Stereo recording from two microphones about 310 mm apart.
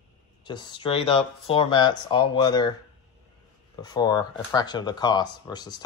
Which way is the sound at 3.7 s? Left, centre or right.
Centre.